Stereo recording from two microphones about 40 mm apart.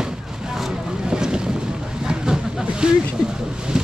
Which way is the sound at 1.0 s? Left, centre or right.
Centre.